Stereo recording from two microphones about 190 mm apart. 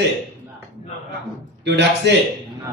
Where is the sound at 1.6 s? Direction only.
65° right (ahead or behind).